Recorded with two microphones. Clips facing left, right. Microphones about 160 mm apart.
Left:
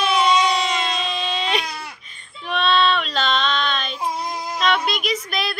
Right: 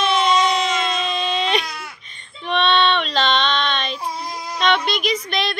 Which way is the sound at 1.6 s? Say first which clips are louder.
Left 1 dB; 35° left (ahead or behind).